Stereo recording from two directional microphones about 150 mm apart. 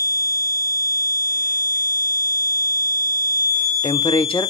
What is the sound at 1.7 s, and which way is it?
Buzzer, 75° right (ahead or behind).